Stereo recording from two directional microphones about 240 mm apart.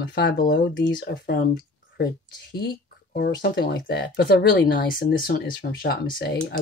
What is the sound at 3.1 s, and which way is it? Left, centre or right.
Speech, left.